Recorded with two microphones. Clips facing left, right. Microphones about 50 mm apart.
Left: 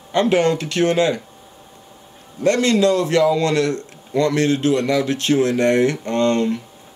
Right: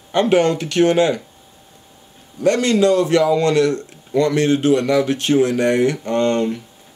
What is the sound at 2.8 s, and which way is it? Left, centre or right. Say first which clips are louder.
Speech: right 3 dB; right.